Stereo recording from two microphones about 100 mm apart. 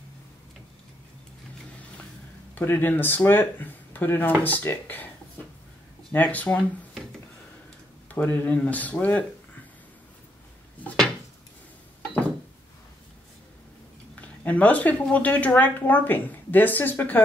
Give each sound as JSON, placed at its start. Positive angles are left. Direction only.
{"t": 2.5, "sound": "speech", "side_deg": 20}
{"t": 6.1, "sound": "speech", "side_deg": 15}
{"t": 8.1, "sound": "speech", "side_deg": 20}
{"t": 14.2, "sound": "speech", "side_deg": 15}